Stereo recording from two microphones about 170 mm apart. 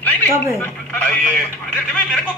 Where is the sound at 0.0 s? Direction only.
10° left (ahead or behind).